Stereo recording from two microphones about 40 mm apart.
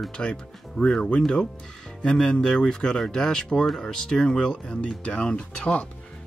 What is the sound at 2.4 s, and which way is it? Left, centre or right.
Speech, centre.